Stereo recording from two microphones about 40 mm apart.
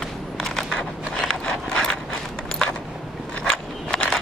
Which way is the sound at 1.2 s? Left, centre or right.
Centre.